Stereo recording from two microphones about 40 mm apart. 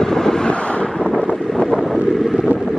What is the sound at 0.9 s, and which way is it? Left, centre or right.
Wind noise, centre.